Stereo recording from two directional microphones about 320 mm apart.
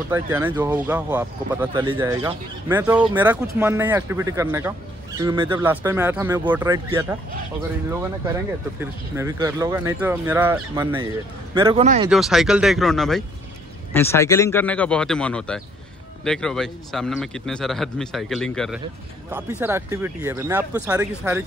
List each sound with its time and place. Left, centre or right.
0.1 s speech: centre
9.1 s speech: centre
12.1 s speech: centre